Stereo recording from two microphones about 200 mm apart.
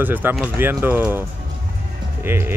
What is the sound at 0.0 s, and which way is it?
Speech, 10° right (ahead or behind).